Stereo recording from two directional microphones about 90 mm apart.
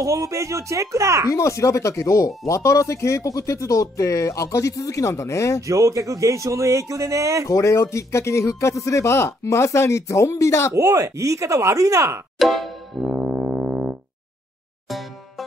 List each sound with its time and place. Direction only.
0.0 s speech: 35° right (ahead or behind)
1.3 s speech: 35° left (ahead or behind)
5.6 s speech: 35° right (ahead or behind)
7.4 s speech: 35° left (ahead or behind)
10.7 s speech: 40° right (ahead or behind)
12.4 s music: centre (ahead or behind)
13.1 s music: 10° right (ahead or behind)